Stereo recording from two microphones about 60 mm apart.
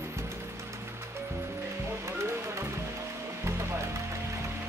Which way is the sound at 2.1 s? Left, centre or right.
Right.